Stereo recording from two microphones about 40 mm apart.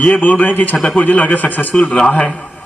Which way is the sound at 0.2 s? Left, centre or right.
Left.